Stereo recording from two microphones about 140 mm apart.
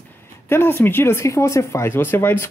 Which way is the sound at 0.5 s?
15° left (ahead or behind).